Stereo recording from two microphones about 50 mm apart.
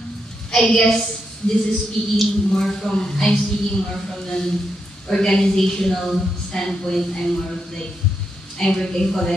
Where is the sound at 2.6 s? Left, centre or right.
Centre.